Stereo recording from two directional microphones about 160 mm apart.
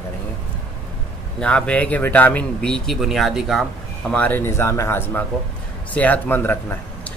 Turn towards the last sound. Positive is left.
turn(degrees=10)  # may be behind; listen again after turning